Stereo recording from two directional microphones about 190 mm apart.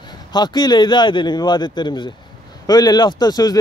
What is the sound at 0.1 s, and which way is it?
A man's voice, 20° left (ahead or behind).